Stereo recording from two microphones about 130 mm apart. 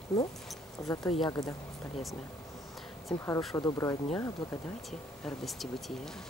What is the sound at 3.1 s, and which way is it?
Speech, 10° left (ahead or behind).